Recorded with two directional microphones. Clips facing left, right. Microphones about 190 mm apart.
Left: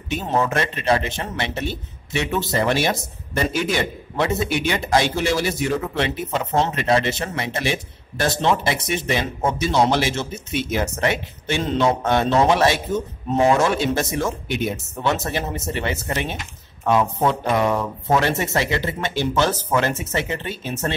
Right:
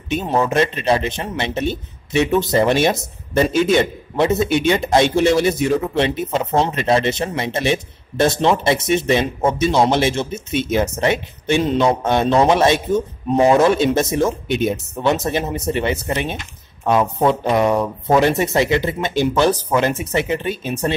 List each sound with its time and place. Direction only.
0.1 s a man's voice: 15° right (ahead or behind)